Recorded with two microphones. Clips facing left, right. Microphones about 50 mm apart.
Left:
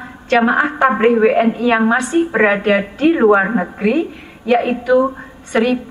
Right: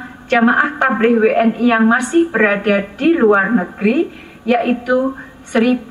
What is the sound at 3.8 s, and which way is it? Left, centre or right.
Speech, right.